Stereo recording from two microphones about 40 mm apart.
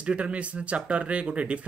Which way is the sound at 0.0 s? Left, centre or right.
Right.